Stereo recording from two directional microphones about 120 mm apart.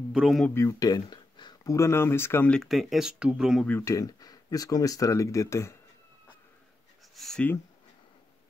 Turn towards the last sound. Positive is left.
turn(degrees=0)  # may be behind; listen again after turning